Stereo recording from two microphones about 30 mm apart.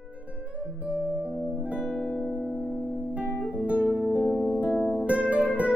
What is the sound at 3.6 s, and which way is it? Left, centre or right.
Music, right.